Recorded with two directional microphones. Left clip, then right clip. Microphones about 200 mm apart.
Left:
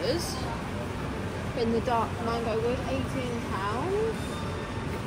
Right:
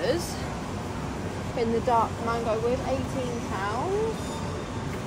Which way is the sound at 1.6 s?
10° right (ahead or behind).